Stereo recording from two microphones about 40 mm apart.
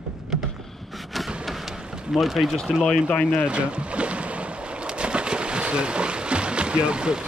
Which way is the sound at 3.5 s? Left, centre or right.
Right.